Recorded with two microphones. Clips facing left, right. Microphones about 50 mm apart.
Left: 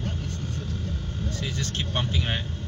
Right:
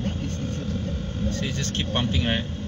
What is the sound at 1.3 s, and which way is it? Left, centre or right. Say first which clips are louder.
Speech: right 2 dB; right.